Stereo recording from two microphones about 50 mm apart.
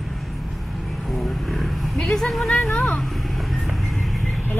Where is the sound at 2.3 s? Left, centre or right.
Centre.